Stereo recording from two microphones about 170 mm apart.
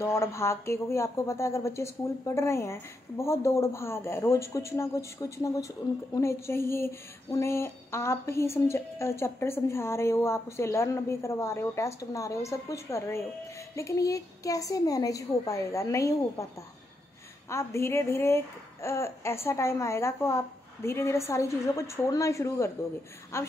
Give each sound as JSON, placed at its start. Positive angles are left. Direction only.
{"t": 0.0, "sound": "a woman's voice", "side_deg": 15}
{"t": 17.5, "sound": "speech", "side_deg": 15}